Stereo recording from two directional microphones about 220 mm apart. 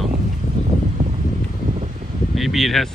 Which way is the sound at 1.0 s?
35° right (ahead or behind).